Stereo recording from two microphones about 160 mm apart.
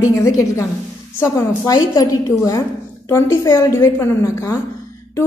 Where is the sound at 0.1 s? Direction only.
20° left (ahead or behind).